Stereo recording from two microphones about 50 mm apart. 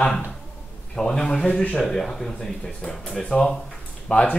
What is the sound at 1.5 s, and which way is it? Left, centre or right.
Speech, left.